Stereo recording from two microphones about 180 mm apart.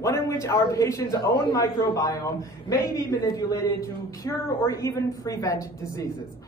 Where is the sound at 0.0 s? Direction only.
15° left (ahead or behind).